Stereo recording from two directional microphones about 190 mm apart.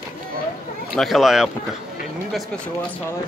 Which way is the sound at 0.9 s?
Centre (ahead or behind).